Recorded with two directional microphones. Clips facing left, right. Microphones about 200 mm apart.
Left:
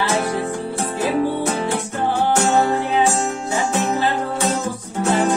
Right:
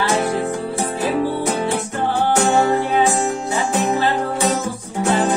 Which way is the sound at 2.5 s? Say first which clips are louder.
Right 1 dB; 15° right (ahead or behind).